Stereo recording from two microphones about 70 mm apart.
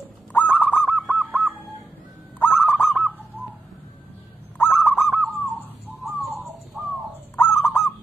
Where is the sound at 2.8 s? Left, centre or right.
Centre.